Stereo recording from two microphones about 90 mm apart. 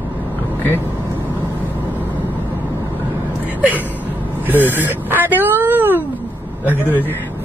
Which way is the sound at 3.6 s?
20° right (ahead or behind).